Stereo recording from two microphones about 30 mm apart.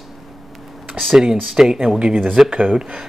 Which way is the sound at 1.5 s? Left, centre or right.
Right.